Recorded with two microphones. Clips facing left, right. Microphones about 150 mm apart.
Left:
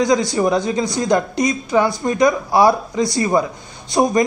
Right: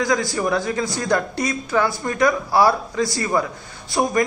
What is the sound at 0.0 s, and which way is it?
Speech, 20° left (ahead or behind).